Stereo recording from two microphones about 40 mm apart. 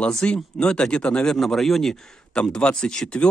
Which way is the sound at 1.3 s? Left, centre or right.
Centre.